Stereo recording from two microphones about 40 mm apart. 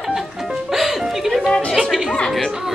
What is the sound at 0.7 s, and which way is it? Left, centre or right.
Music, centre.